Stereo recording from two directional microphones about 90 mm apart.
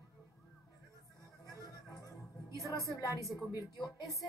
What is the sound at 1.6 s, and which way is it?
Music, 40° left (ahead or behind).